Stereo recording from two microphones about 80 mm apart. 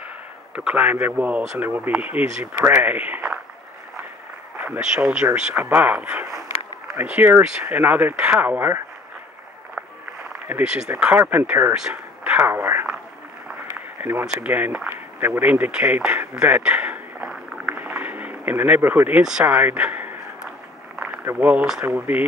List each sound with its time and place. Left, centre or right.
0.7 s speech: centre
4.6 s speech: centre
10.6 s speech: centre
11.9 s a sound: right
13.9 s a sound: right
14.2 s speech: centre
17.6 s a sound: right
18.8 s speech: right
21.4 s speech: centre